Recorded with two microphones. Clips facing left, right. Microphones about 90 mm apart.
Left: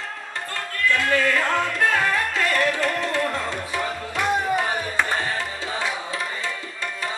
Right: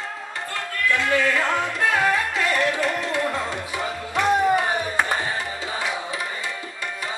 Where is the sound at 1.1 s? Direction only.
20° right (ahead or behind).